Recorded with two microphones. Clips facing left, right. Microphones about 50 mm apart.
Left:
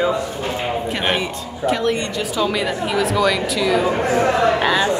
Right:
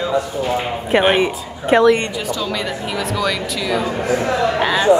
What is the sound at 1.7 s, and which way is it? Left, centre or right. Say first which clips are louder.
Speech: right 8 dB; right.